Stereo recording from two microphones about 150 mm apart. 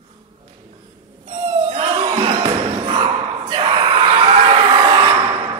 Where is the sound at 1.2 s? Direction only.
45° right (ahead or behind).